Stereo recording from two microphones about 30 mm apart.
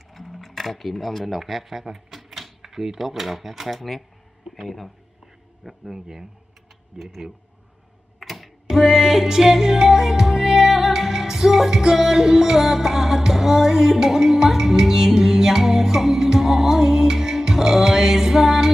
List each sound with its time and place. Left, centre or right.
0.1 s speech: centre
5.9 s a man's voice: centre
6.9 s speech: right
8.2 s a sound: centre
8.6 s music: centre